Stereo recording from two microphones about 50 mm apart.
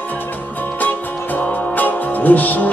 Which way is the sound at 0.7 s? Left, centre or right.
Left.